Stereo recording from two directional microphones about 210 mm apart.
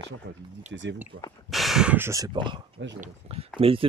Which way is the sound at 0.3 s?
60° right (ahead or behind).